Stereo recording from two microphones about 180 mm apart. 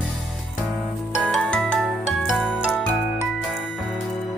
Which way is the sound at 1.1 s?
5° right (ahead or behind).